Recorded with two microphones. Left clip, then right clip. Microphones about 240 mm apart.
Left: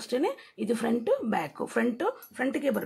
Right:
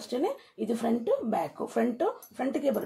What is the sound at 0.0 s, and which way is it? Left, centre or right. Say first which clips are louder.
Speech: left 2 dB; left.